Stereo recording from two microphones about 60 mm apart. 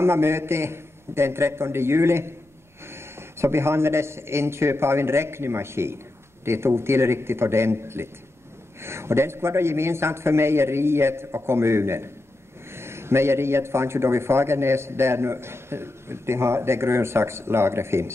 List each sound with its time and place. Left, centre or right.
0.0 s a man's voice: right